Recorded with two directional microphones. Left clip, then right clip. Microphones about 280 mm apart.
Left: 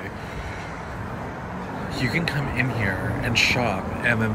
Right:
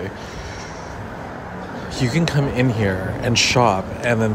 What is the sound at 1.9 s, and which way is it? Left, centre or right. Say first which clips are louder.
A man's voice: right 4 dB; right.